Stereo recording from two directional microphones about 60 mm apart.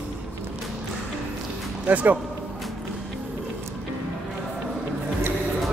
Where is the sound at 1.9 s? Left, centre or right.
Right.